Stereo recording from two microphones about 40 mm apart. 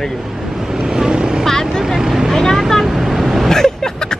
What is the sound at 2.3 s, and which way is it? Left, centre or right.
Vehicle, centre.